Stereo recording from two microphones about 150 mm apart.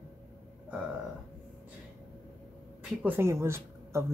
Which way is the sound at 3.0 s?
15° right (ahead or behind).